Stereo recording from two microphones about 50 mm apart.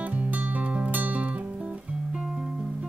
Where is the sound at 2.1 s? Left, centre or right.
Centre.